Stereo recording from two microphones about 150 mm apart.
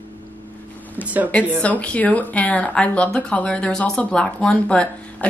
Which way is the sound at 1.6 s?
10° left (ahead or behind).